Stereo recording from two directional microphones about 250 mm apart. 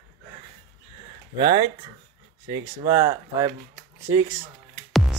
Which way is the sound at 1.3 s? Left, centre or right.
Centre.